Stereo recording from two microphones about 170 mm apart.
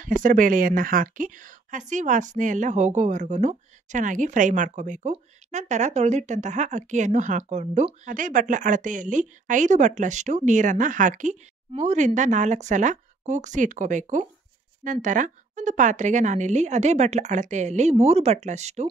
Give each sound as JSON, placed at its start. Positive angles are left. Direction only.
{"t": 0.0, "sound": "a woman's voice", "side_deg": -50}
{"t": 8.0, "sound": "a woman's voice", "side_deg": -50}